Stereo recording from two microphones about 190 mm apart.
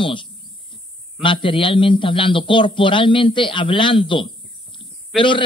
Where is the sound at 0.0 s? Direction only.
25° left (ahead or behind).